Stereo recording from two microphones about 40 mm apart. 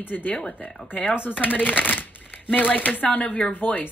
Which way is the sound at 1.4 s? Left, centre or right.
Left.